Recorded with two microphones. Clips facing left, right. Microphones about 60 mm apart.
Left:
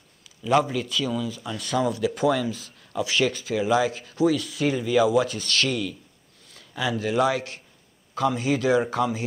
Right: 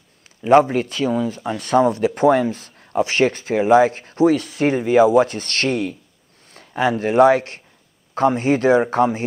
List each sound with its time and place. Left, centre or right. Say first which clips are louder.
0.4 s speech: right 8 dB; right